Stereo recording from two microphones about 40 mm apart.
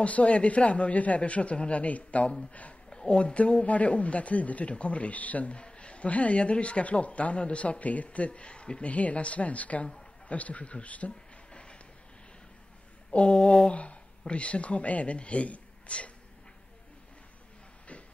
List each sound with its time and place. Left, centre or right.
0.0 s speech: left
2.9 s speech: left
3.6 s speech: left
5.6 s speech: left
11.5 s vehicle: left
13.1 s a sound: left
13.7 s speech: left